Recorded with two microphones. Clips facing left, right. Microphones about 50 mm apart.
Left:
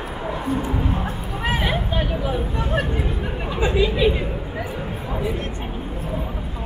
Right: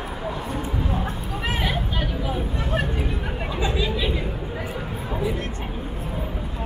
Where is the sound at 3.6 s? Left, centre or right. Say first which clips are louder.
Left 7 dB; left.